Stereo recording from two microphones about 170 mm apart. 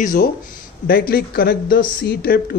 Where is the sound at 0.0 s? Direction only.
50° left (ahead or behind).